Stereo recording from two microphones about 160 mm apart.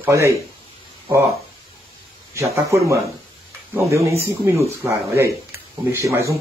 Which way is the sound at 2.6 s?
20° right (ahead or behind).